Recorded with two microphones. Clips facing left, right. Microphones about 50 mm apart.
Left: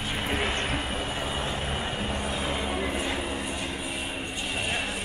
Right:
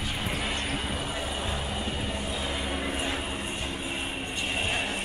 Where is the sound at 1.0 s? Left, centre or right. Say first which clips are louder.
Left 2 dB; left.